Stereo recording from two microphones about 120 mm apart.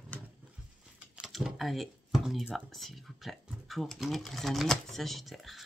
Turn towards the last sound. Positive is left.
turn(degrees=0)  # may be behind; listen again after turning